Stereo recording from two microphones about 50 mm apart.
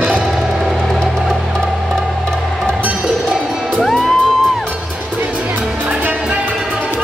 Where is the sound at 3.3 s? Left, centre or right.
Centre.